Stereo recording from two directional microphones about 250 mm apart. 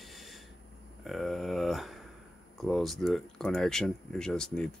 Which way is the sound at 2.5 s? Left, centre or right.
Centre.